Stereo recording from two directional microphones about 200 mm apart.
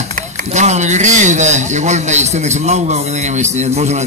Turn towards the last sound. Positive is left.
turn(degrees=-35)  # may be behind; listen again after turning